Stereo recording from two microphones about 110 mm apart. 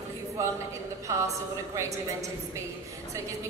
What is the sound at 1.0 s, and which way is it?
A woman's voice, 30° right (ahead or behind).